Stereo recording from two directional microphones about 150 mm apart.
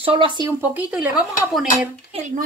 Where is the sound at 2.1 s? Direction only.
50° right (ahead or behind).